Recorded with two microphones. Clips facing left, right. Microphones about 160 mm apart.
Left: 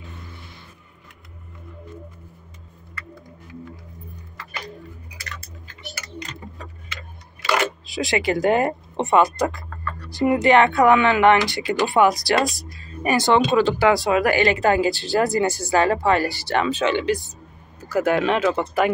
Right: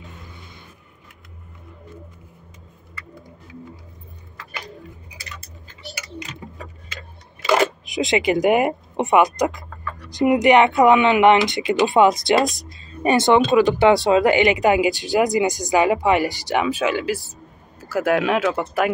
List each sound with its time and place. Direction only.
0.3 s vehicle: 20° right (ahead or behind)
5.1 s tick-tock: 20° right (ahead or behind)
7.5 s speech: 20° right (ahead or behind)
12.5 s music: 25° right (ahead or behind)
14.0 s speech: 20° right (ahead or behind); by 18.9 s 5° right (ahead or behind)